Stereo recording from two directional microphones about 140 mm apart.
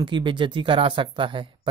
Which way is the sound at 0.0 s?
35° right (ahead or behind).